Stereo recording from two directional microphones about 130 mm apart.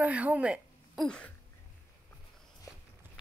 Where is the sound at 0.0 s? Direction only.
10° right (ahead or behind).